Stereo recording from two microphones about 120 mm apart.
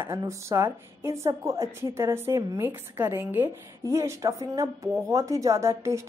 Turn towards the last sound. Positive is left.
turn(degrees=-25)  # may be behind; listen again after turning